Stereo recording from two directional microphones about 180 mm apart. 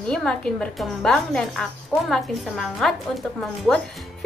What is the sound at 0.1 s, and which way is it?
Speech, 5° left (ahead or behind).